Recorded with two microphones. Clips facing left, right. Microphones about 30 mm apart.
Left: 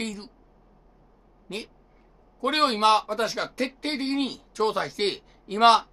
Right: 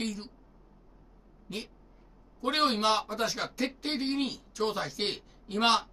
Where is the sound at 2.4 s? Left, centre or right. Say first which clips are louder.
Left 5 dB; centre.